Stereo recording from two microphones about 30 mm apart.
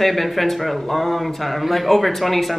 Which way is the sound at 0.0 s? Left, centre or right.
Centre.